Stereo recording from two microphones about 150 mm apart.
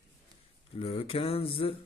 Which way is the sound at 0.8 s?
40° left (ahead or behind).